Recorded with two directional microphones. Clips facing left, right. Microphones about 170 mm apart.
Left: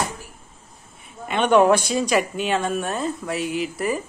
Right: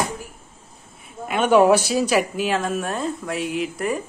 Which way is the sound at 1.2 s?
5° right (ahead or behind).